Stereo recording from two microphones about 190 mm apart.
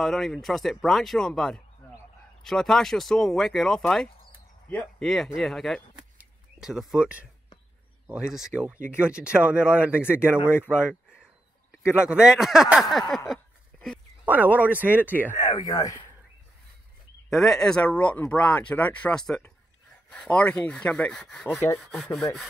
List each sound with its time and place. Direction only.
0.0 s speech: centre (ahead or behind)
13.3 s a sound: centre (ahead or behind)
14.2 s speech: 10° right (ahead or behind)
15.4 s speech: 20° left (ahead or behind)
17.3 s speech: centre (ahead or behind)
21.9 s speech: centre (ahead or behind)